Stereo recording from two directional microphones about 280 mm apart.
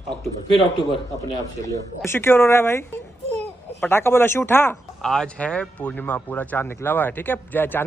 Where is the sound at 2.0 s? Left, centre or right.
Centre.